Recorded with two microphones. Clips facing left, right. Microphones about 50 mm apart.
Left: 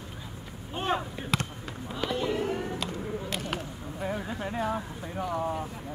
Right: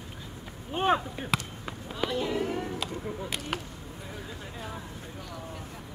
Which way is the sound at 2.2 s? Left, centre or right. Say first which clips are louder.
Left 1 dB; centre.